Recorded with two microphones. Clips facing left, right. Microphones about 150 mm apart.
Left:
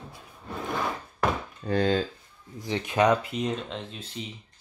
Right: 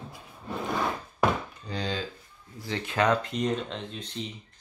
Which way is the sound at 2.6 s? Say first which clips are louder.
Left 3 dB; 15° left (ahead or behind).